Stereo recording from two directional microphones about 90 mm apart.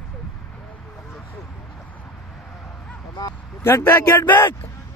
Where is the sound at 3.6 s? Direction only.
25° left (ahead or behind).